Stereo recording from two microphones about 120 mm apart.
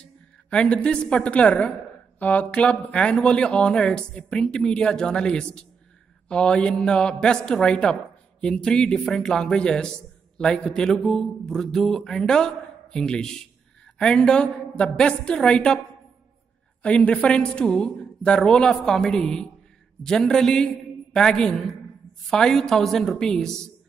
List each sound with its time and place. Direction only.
0.0 s a woman's voice: 10° left (ahead or behind)
16.8 s a woman's voice: 10° left (ahead or behind)